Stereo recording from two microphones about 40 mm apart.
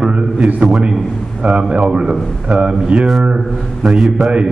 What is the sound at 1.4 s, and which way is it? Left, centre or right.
A man's voice, right.